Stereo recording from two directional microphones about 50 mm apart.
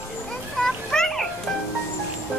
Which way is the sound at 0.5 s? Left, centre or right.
Centre.